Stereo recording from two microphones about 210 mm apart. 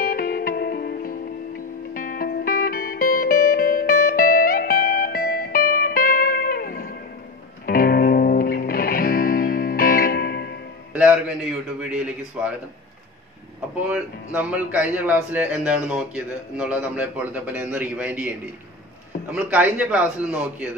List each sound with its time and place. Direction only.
0.0 s music: 45° left (ahead or behind)
10.9 s a sound: 5° right (ahead or behind)
11.9 s speech: 5° right (ahead or behind)
13.8 s speech: 5° right (ahead or behind)